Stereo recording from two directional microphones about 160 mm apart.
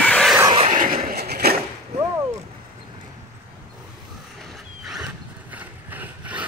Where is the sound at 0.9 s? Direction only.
70° right (ahead or behind).